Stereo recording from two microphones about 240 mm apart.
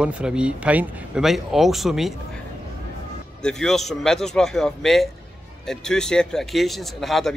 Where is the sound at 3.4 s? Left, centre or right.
Centre.